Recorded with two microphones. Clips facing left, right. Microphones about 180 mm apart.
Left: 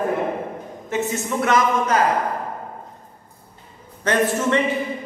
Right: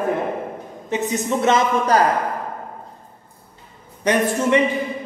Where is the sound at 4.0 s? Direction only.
15° right (ahead or behind).